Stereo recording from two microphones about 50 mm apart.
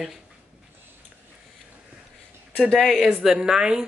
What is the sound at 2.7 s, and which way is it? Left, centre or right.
Speech, centre.